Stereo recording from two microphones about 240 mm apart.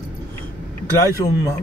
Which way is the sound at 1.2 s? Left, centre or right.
Centre.